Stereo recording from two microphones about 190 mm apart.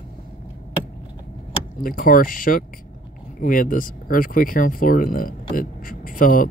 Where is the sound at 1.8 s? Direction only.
50° left (ahead or behind).